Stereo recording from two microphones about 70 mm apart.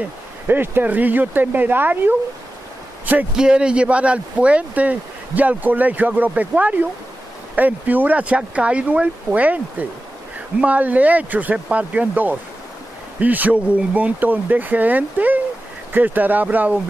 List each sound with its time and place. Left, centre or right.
0.0 s speech: right
3.3 s speech: centre